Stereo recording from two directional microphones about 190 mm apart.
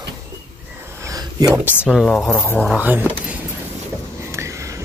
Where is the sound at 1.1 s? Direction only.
20° right (ahead or behind).